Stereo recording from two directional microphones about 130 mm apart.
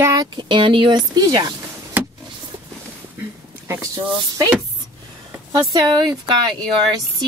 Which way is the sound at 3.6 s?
20° right (ahead or behind).